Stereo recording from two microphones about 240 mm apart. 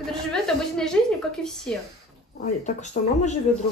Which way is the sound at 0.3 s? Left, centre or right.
Centre.